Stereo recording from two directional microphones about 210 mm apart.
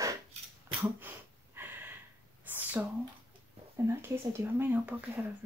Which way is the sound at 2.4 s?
10° right (ahead or behind).